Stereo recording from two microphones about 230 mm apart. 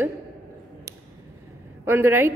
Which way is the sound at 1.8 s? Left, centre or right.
Centre.